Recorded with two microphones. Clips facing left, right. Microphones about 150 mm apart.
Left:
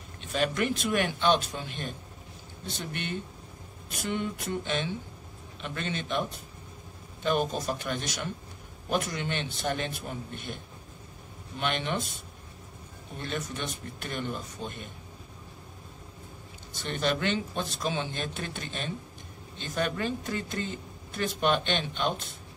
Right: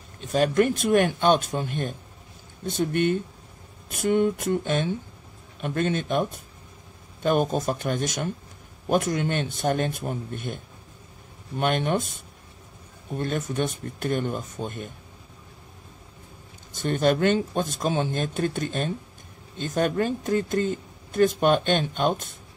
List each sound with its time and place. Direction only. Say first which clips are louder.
0.2 s speech: right 7 dB; 40° right (ahead or behind)
7.2 s speech: right 5 dB; 50° right (ahead or behind)
13.2 s speech: right 8 dB; 50° right (ahead or behind)
16.7 s speech: right 7 dB; 45° right (ahead or behind)